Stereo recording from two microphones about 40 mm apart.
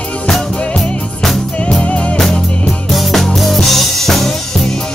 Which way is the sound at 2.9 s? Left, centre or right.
Centre.